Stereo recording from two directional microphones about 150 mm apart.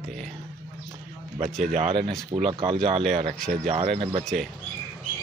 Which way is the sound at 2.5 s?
35° right (ahead or behind).